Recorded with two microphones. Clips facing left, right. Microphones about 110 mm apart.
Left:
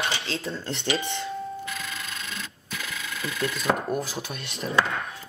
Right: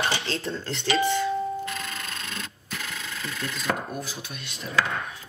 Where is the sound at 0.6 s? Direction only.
25° left (ahead or behind).